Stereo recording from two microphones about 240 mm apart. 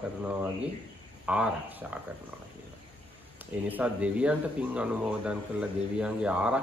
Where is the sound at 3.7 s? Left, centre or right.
Centre.